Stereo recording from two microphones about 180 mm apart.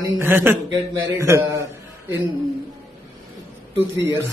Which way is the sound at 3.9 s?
80° right.